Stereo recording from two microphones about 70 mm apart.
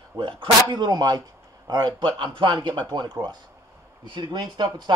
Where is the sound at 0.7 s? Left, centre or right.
Right.